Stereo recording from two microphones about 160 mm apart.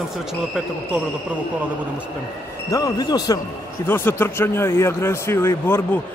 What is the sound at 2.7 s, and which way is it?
A man's voice, 20° left (ahead or behind).